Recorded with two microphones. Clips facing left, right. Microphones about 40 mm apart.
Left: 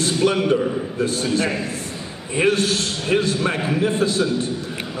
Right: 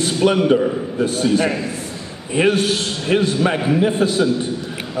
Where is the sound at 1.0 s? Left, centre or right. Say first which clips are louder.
Right 3 dB; centre.